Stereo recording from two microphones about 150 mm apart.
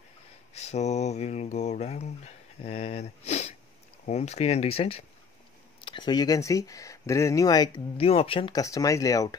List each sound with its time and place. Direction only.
0.6 s a sound: 45° left (ahead or behind)
4.0 s speech: 50° left (ahead or behind); by 7.8 s 25° left (ahead or behind)
8.0 s speech: 40° left (ahead or behind); by 9.3 s 25° left (ahead or behind)